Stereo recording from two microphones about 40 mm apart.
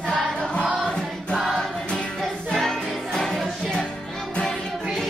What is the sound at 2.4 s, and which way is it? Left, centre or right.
Music, centre.